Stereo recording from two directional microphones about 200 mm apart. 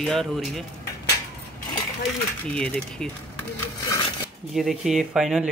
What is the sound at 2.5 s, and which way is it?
Speech, 5° left (ahead or behind).